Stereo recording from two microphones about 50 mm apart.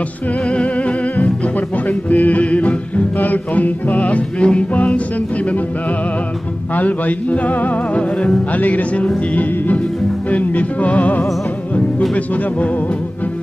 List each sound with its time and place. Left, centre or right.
0.5 s music: left
6.7 s music: left